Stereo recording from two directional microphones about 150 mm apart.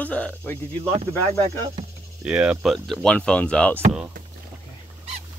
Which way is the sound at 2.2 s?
5° right (ahead or behind).